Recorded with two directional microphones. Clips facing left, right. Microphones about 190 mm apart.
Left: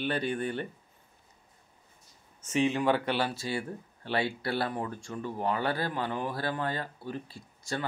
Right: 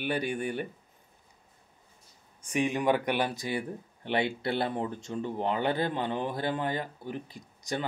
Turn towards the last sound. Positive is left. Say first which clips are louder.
# right 2 dB
turn(degrees=-20)  # may be behind; listen again after turning